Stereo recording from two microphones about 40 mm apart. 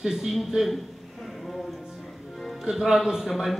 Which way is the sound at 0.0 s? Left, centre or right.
Centre.